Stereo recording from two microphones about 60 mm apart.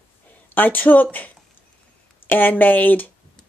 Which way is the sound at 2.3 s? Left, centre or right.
Left.